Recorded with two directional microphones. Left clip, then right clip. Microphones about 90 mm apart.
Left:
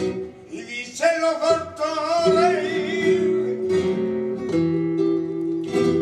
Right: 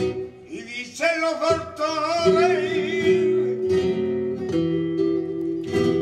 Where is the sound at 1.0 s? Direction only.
20° left (ahead or behind).